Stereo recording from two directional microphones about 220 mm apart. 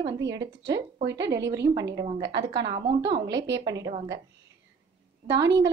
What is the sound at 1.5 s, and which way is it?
A woman's voice, 15° right (ahead or behind).